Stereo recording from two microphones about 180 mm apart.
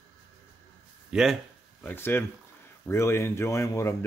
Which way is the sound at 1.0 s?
5° right (ahead or behind).